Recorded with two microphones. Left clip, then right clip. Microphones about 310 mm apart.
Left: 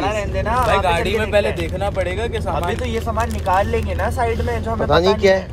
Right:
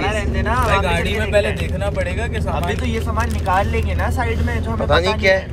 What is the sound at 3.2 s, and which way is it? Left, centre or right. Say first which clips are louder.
Speech: left 1 dB; left.